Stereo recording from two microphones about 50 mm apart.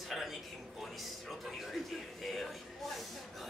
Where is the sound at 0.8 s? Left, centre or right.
Centre.